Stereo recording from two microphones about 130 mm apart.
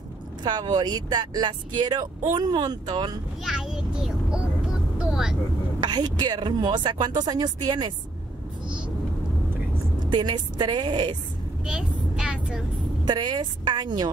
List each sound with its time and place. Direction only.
0.4 s speech: 35° right (ahead or behind)
3.4 s a sound: 5° right (ahead or behind)
5.0 s vehicle: 5° right (ahead or behind)
5.8 s speech: 35° right (ahead or behind)
9.9 s speech: 35° right (ahead or behind)
11.6 s vehicle: 5° right (ahead or behind)
13.0 s speech: 35° right (ahead or behind)